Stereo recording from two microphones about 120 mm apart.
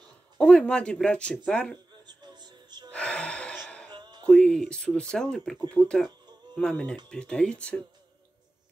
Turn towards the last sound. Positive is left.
turn(degrees=10)  # may be behind; listen again after turning